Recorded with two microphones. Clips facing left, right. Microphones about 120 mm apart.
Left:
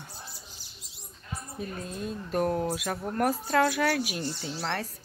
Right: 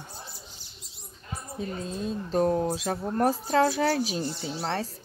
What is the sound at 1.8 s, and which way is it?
A woman's voice, 25° right (ahead or behind).